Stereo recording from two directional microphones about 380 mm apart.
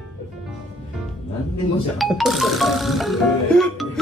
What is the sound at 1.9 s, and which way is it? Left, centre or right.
Speech, centre.